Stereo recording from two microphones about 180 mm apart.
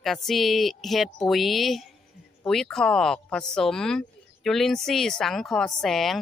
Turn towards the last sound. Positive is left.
turn(degrees=0)  # may be behind; listen again after turning